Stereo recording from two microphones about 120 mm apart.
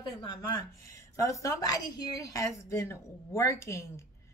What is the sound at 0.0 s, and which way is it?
A woman's voice, 45° left (ahead or behind).